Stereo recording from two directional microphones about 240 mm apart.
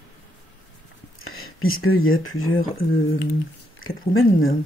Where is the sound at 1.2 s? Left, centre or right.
Left.